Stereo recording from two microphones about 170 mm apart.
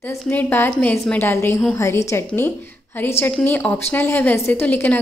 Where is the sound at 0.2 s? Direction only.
10° left (ahead or behind).